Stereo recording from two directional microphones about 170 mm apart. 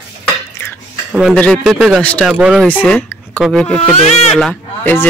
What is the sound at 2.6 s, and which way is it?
Speech, 10° left (ahead or behind).